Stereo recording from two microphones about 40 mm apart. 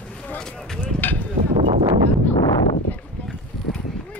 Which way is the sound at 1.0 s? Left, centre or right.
Left.